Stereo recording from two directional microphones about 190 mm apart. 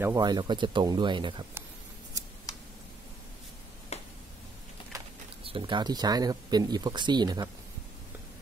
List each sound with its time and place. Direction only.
0.0 s speech: 20° right (ahead or behind)
3.9 s a sound: 35° left (ahead or behind)
5.4 s speech: 25° right (ahead or behind)